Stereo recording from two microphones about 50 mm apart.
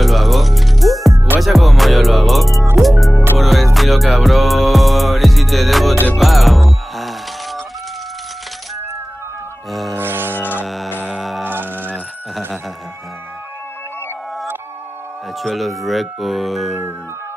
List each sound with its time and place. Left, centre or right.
0.0 s music: centre
9.7 s music: centre
9.9 s music: right
11.4 s a sound: right
15.4 s speech: centre